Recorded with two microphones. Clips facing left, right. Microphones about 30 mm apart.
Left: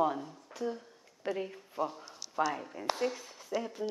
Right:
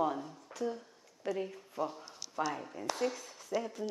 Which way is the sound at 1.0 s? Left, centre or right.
Left.